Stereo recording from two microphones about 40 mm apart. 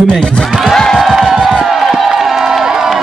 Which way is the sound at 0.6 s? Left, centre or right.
Centre.